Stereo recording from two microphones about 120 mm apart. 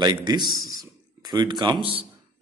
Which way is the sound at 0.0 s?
35° right (ahead or behind).